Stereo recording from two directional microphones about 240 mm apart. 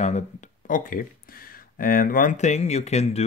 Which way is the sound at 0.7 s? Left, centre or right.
Left.